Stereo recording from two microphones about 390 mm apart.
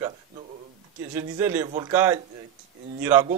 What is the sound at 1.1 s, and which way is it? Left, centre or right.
A man's voice, centre.